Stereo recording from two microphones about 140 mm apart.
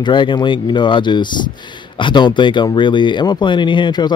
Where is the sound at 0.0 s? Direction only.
35° left (ahead or behind).